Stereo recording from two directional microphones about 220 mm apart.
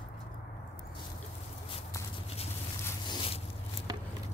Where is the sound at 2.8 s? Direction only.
20° left (ahead or behind).